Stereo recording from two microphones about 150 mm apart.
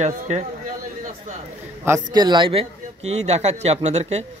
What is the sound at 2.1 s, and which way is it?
A man's voice, 30° right (ahead or behind).